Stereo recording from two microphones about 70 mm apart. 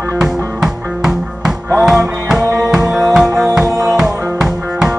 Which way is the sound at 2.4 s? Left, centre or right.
Right.